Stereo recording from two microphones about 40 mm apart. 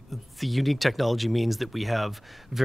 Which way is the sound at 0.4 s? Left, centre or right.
Centre.